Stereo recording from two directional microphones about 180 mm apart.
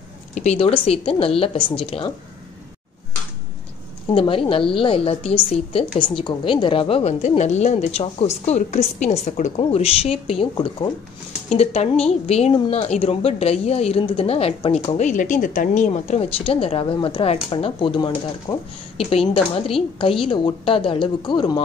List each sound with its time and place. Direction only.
0.3 s a woman's voice: 40° left (ahead or behind)
4.1 s a woman's voice: 30° left (ahead or behind)